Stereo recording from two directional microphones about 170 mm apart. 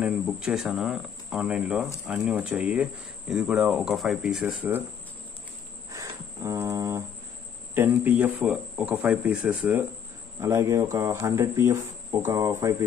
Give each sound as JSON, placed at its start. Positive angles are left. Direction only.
{"t": 0.0, "sound": "speech", "side_deg": -5}
{"t": 5.9, "sound": "music", "side_deg": -20}
{"t": 7.7, "sound": "speech", "side_deg": -10}